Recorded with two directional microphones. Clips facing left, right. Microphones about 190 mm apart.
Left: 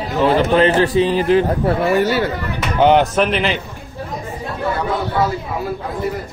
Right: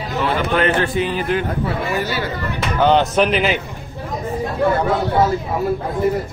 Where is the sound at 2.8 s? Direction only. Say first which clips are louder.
Left 2 dB; 15° left (ahead or behind).